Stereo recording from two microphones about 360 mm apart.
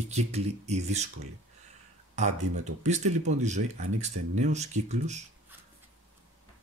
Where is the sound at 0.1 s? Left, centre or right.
Centre.